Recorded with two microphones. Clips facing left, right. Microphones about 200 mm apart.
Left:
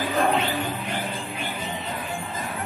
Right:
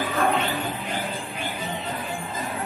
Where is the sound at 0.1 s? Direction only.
30° left (ahead or behind).